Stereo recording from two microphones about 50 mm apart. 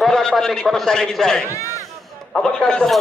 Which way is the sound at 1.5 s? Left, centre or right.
Left.